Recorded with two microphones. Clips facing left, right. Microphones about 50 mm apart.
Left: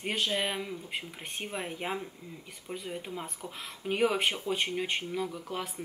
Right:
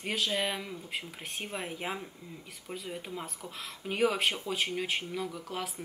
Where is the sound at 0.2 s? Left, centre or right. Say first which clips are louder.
Even; centre.